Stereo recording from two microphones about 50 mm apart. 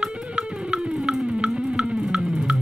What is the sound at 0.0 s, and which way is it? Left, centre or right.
Music, centre.